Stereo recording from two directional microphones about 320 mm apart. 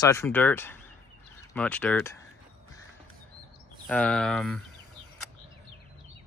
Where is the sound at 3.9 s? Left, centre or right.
Centre.